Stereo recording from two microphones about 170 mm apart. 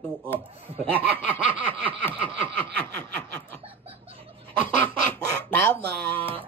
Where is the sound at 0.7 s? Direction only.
35° right (ahead or behind).